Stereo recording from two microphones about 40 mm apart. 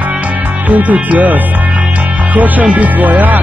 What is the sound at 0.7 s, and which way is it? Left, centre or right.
Speech, right.